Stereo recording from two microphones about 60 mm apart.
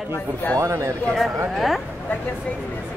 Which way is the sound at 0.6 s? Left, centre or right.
Right.